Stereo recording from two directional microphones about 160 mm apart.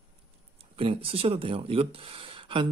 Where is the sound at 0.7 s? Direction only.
35° right (ahead or behind).